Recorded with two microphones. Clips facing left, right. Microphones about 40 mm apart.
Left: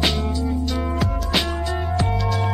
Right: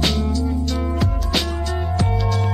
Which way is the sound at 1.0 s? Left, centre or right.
Centre.